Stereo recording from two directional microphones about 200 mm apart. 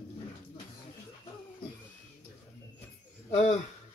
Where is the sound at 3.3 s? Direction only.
35° left (ahead or behind).